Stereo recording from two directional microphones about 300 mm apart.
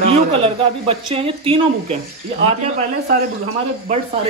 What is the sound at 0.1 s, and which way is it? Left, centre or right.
Speech, centre.